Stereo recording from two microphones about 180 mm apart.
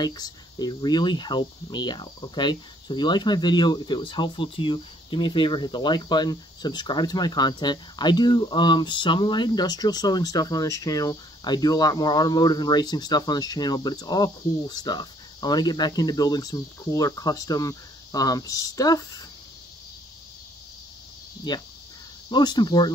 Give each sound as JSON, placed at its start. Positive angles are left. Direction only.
{"t": 0.0, "sound": "speech", "side_deg": 20}
{"t": 21.5, "sound": "speech", "side_deg": 25}